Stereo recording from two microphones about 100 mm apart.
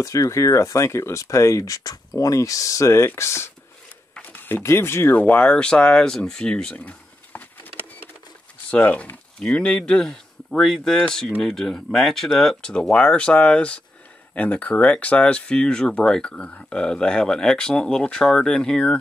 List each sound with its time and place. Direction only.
0.0 s speech: 30° left (ahead or behind)
5.2 s speech: 10° left (ahead or behind)